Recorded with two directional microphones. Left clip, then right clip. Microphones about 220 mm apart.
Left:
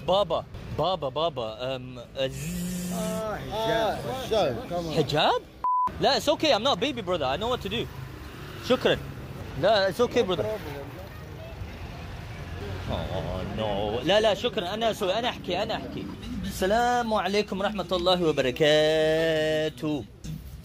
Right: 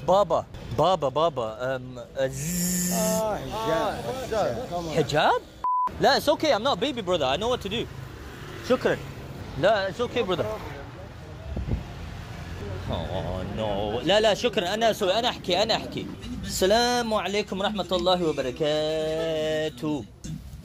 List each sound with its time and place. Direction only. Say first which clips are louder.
0.0 s speech: right 3 dB; 10° right (ahead or behind)
2.5 s spray: right 6 dB; 20° right (ahead or behind)
3.8 s speech: even; 35° left (ahead or behind)
4.9 s speech: right 2 dB; 5° left (ahead or behind)
5.6 s a sound: even; centre (ahead or behind)
5.9 s speech: right 2 dB; 5° right (ahead or behind)
9.8 s speech: left 3 dB; 25° left (ahead or behind)
12.9 s speech: right 1 dB; 5° right (ahead or behind)
14.3 s speech: right 3 dB; 20° right (ahead or behind)
15.4 s spray: right 5 dB; 20° right (ahead or behind)
16.5 s speech: right 2 dB; 15° right (ahead or behind)
17.1 s speech: left 1 dB; 10° left (ahead or behind)
17.6 s speech: right 1 dB; 10° right (ahead or behind)
18.2 s speech: left 3 dB; 15° left (ahead or behind)